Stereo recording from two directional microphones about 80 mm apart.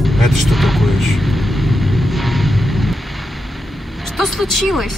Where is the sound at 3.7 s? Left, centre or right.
Centre.